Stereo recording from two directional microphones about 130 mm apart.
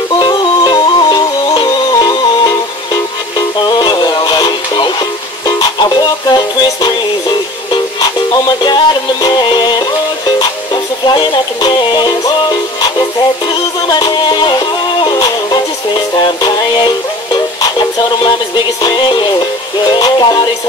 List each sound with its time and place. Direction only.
0.2 s music: 35° left (ahead or behind)
13.8 s music: 35° left (ahead or behind)